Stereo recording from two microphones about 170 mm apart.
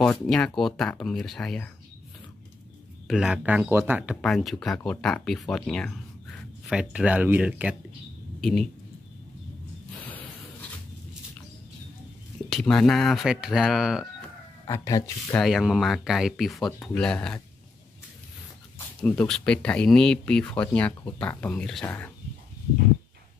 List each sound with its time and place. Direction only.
0.3 s speech: centre (ahead or behind)
3.1 s speech: 5° right (ahead or behind)
6.7 s speech: 5° right (ahead or behind)
8.4 s speech: centre (ahead or behind)
12.4 s speech: 5° left (ahead or behind)
14.7 s speech: 20° left (ahead or behind)
15.3 s speech: centre (ahead or behind)
18.9 s speech: 5° left (ahead or behind)